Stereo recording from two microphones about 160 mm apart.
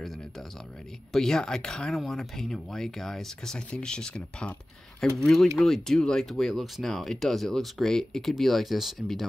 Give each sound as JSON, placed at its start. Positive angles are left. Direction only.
{"t": 1.1, "sound": "speech", "side_deg": 5}